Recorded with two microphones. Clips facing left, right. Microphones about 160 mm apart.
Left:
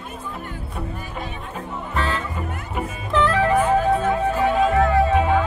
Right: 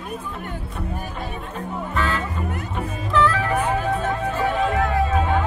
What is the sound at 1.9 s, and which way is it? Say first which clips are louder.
Music: even; 35° left (ahead or behind).